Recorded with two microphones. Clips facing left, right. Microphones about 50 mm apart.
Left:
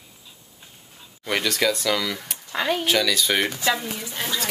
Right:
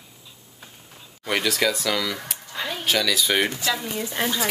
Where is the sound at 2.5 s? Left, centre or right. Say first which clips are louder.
Left 7 dB; left.